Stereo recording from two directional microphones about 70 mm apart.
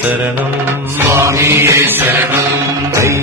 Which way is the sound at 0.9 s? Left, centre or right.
Right.